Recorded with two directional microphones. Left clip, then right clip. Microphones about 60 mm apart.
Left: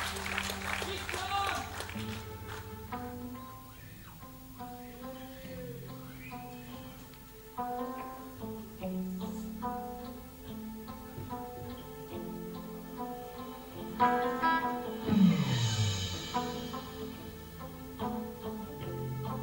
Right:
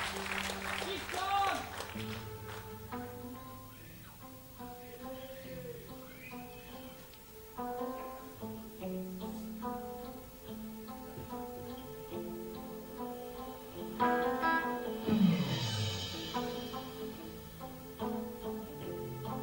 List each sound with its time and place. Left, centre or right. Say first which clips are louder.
0.3 s music: left 2 dB; left
7.6 s music: left 4 dB; left
8.8 s music: left 2 dB; left
13.9 s music: left 3 dB; left